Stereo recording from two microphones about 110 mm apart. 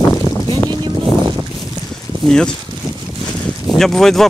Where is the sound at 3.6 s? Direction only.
5° left (ahead or behind).